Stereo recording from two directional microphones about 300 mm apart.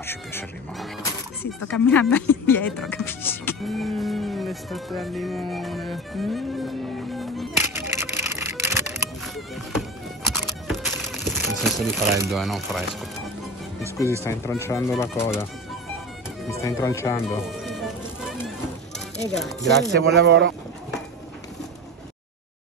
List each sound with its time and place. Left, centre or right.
0.0 s speech: centre
7.7 s music: centre
12.1 s speech: centre
16.4 s speech: centre
19.3 s speech: centre
19.9 s speech: right